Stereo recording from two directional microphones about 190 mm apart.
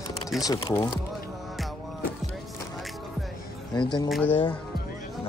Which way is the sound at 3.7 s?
25° left (ahead or behind).